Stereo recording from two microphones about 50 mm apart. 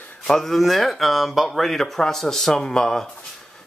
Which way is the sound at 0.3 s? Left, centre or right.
Centre.